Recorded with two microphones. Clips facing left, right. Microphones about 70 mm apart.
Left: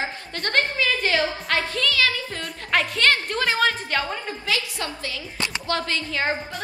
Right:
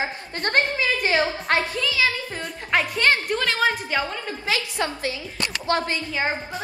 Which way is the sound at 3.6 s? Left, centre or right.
Centre.